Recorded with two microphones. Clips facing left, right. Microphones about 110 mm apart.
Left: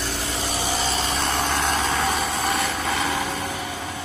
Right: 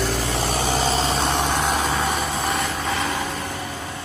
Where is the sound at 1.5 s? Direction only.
5° right (ahead or behind).